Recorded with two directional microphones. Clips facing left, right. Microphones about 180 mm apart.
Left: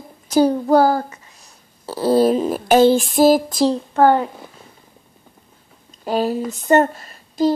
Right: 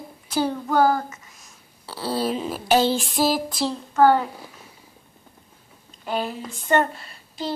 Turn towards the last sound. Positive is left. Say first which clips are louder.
# left 12 dB
turn(degrees=45)  # may be behind; listen again after turning